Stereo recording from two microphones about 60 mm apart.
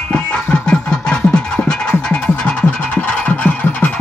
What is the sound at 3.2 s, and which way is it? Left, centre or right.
Music, left.